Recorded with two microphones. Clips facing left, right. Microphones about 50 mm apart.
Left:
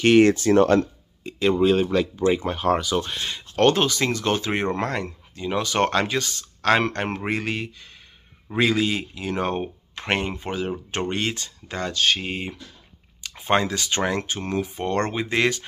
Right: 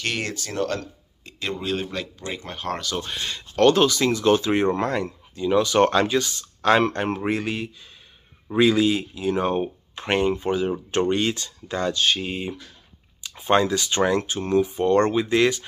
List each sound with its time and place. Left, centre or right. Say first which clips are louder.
0.0 s speech: left 13 dB; left
1.2 s speech: left 10 dB; centre
3.5 s speech: right 2 dB; left